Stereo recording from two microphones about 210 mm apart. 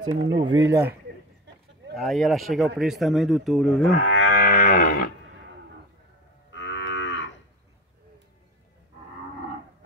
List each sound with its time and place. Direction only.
0.1 s speech: 70° right (ahead or behind)
0.6 s speech: 15° right (ahead or behind)
2.0 s speech: centre (ahead or behind)
3.9 s livestock: 40° left (ahead or behind)
6.5 s livestock: 60° left (ahead or behind)